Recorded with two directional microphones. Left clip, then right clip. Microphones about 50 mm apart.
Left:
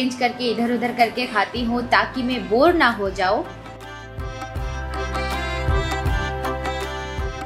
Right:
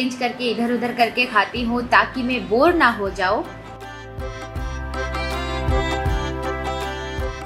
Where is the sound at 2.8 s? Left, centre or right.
Left.